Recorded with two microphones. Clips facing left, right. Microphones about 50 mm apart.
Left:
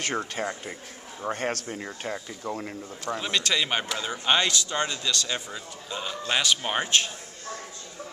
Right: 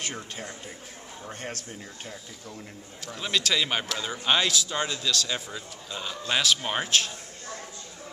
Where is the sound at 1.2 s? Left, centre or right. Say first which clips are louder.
Left 9 dB; left.